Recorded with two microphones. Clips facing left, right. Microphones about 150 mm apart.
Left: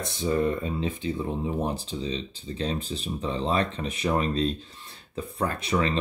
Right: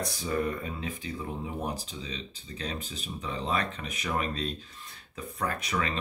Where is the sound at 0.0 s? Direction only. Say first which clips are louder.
Left 5 dB; 25° left (ahead or behind).